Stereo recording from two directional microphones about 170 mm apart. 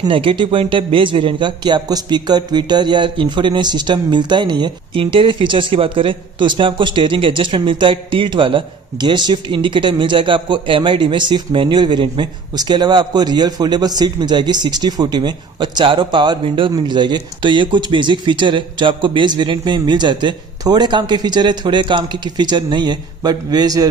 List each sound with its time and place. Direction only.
0.0 s a man's voice: 30° right (ahead or behind)